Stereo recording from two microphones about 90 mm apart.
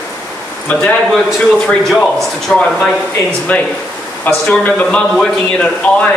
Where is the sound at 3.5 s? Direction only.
15° left (ahead or behind).